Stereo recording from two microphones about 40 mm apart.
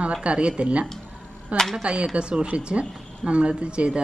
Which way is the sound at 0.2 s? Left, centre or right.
Right.